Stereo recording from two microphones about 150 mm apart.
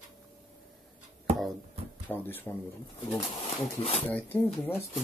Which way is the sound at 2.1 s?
15° left (ahead or behind).